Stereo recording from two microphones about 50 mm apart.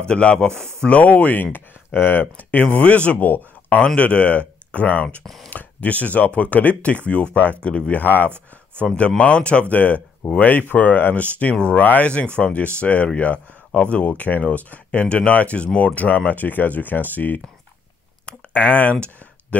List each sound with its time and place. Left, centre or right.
0.0 s speech: left
2.6 s speech: left
3.3 s speech: left
3.8 s speech: left
5.2 s speech: centre
5.5 s speech: left
7.6 s speech: centre
7.9 s speech: left
8.8 s speech: centre
9.2 s speech: left
18.2 s a sound: left